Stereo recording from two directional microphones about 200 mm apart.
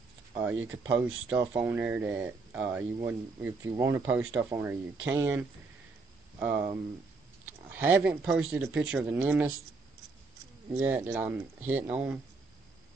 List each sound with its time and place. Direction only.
0.4 s speech: 10° right (ahead or behind)
10.8 s speech: 15° right (ahead or behind)